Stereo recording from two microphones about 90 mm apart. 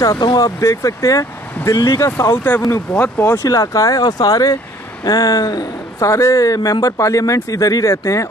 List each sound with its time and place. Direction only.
0.0 s speech: 45° left (ahead or behind)